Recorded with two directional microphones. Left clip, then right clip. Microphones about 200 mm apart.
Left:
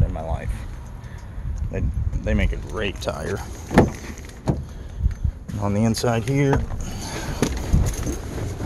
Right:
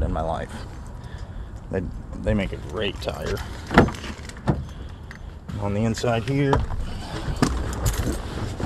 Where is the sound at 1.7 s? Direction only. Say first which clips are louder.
Right 4 dB; 30° right (ahead or behind).